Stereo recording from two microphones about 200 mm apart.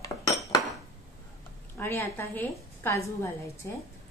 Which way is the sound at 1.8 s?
10° left (ahead or behind).